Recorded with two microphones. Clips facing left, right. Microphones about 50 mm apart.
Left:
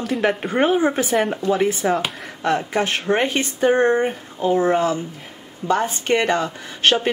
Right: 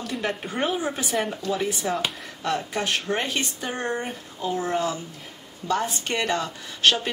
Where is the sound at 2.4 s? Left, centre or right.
Left.